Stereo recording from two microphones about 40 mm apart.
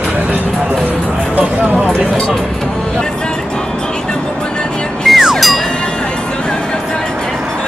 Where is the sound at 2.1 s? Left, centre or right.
Centre.